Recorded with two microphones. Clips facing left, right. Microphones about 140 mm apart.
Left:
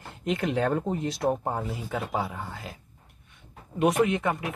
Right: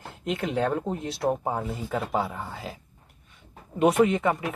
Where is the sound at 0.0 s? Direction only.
Centre (ahead or behind).